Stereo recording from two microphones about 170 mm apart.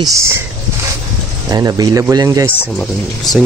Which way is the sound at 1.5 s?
20° right (ahead or behind).